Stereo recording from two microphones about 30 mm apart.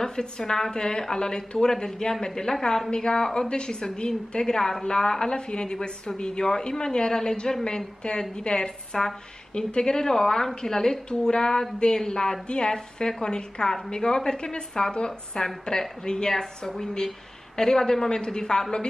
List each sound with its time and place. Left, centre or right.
0.0 s a woman's voice: centre
5.3 s a woman's voice: left
8.9 s a woman's voice: centre
9.5 s a woman's voice: left
12.4 s a woman's voice: left